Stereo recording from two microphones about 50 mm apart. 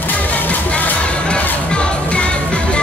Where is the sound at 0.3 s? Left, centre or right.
Left.